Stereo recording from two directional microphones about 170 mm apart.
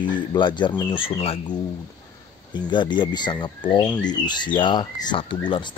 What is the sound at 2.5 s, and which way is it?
Speech, 25° left (ahead or behind).